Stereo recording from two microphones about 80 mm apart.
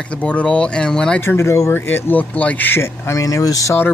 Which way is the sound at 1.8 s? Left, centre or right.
Left.